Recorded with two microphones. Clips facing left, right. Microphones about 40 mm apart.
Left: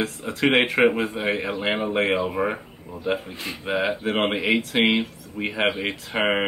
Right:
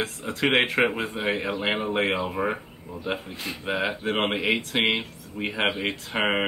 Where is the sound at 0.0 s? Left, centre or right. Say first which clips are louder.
Left 3 dB; centre.